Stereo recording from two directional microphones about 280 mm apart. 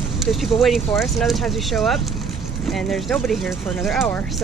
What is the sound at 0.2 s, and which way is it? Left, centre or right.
Speech, centre.